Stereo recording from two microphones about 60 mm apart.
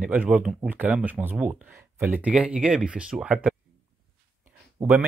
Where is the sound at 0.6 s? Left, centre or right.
Right.